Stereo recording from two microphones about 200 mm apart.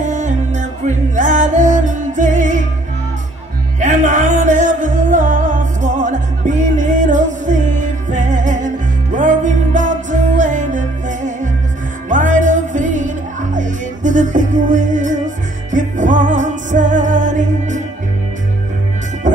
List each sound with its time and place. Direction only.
0.0 s music: 35° right (ahead or behind)
3.8 s music: 40° right (ahead or behind)
19.2 s music: 40° right (ahead or behind)